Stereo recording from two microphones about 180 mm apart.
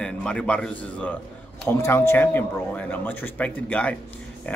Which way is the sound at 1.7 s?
15° left (ahead or behind).